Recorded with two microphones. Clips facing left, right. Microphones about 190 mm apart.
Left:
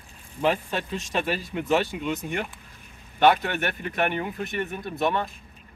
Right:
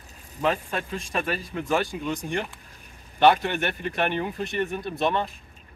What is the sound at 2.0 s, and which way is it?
Speech, 5° left (ahead or behind).